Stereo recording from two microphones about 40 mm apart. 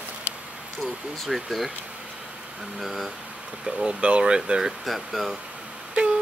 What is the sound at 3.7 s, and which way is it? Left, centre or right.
Speech, centre.